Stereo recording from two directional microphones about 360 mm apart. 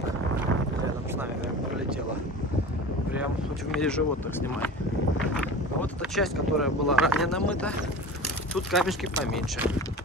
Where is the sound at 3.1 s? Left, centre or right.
Centre.